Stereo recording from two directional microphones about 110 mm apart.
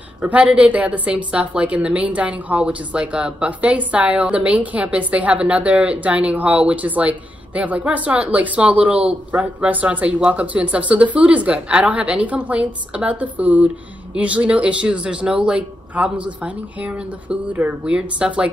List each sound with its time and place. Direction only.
0.2 s a woman's voice: 10° right (ahead or behind)